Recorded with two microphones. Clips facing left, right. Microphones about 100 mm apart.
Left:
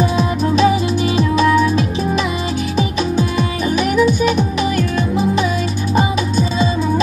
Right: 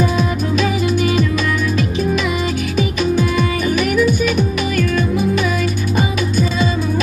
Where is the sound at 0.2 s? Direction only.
30° left (ahead or behind).